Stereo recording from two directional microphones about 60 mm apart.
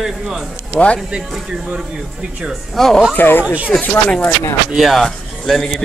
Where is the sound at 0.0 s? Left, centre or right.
Centre.